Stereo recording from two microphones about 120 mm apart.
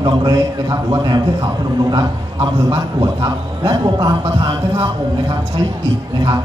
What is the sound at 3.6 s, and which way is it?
Speech, 35° right (ahead or behind).